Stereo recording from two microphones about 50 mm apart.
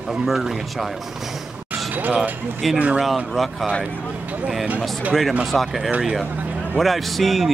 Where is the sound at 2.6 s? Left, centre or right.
Centre.